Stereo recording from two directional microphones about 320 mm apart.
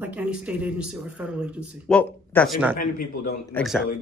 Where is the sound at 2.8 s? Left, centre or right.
Left.